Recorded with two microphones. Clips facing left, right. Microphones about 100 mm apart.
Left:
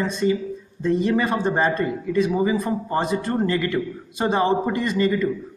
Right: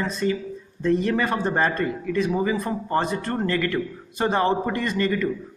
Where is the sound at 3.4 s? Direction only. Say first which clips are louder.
Left 2 dB; 15° left (ahead or behind).